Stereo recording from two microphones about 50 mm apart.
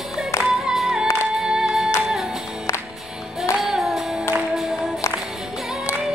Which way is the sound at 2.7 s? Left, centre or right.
Left.